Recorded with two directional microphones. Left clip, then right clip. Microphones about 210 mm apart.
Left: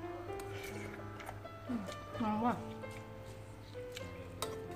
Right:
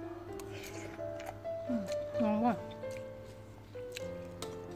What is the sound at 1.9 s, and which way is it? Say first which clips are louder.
Music: right 6 dB; 30° right (ahead or behind).